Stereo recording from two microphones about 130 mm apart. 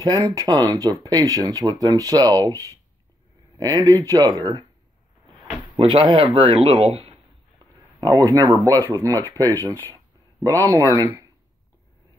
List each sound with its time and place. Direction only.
0.0 s speech: 30° right (ahead or behind)
5.8 s speech: 40° right (ahead or behind)
7.5 s speech: 25° right (ahead or behind)